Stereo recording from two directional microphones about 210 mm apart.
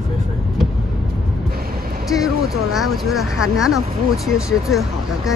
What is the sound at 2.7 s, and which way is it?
Speech, centre (ahead or behind).